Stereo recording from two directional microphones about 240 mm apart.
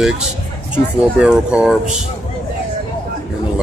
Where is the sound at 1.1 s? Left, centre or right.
Centre.